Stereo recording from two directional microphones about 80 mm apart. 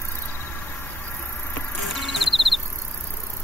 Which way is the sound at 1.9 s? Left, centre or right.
Centre.